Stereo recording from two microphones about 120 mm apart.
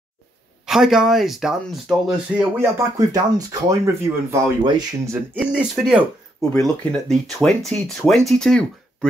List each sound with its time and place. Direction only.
0.7 s speech: 5° right (ahead or behind)
2.6 s speech: 25° right (ahead or behind)
5.4 s speech: 5° right (ahead or behind)
6.6 s speech: 5° left (ahead or behind)